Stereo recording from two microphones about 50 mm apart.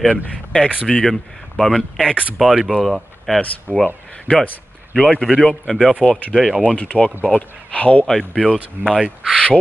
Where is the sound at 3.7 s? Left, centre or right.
Centre.